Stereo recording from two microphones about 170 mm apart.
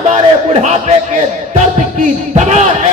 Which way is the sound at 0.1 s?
40° right (ahead or behind).